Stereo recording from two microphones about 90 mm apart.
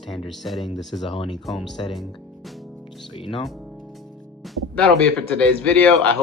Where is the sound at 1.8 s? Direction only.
70° left (ahead or behind).